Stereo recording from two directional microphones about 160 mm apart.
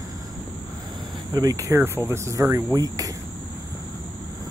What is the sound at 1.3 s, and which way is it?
Speech, 25° right (ahead or behind).